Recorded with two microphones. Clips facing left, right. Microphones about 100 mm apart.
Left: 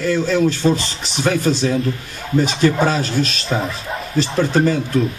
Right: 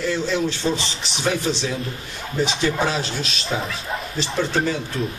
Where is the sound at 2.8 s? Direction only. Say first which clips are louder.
Left 6 dB; 45° left (ahead or behind).